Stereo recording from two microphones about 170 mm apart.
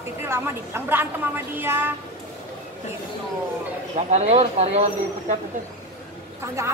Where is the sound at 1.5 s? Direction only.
15° right (ahead or behind).